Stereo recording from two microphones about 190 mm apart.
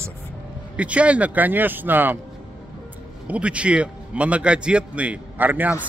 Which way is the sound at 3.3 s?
5° right (ahead or behind).